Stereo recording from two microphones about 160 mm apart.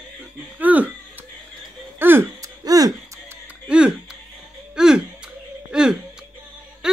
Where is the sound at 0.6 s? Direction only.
10° right (ahead or behind).